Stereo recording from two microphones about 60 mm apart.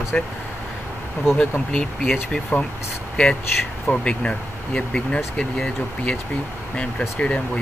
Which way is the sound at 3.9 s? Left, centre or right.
Centre.